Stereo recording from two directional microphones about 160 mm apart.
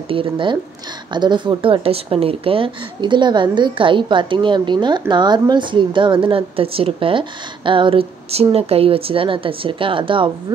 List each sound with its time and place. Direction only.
0.1 s speech: 30° right (ahead or behind)